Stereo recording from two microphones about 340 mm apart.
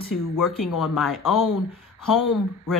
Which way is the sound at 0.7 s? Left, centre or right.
Centre.